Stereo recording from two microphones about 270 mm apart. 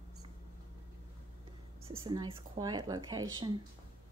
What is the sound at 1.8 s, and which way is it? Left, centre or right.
Speech, centre.